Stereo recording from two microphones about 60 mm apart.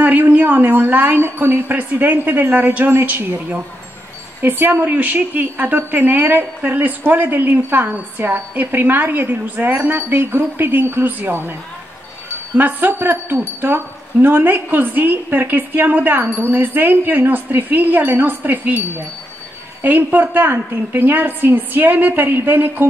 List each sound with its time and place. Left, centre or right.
0.0 s speech: right
4.4 s speech: right
12.5 s speech: right
19.8 s speech: right